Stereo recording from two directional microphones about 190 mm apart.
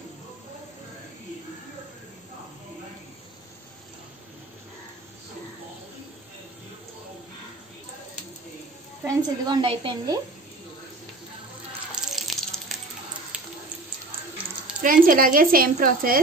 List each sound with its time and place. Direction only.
9.0 s a woman's voice: 25° right (ahead or behind)
11.9 s water: centre (ahead or behind)
14.8 s speech: 45° right (ahead or behind)